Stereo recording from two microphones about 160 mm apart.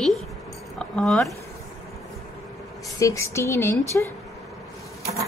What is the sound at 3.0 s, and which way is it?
Speech, 20° left (ahead or behind).